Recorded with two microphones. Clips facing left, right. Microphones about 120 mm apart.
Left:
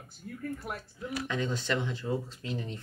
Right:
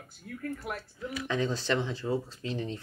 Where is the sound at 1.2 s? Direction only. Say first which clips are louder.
Right 4 dB; 35° right (ahead or behind).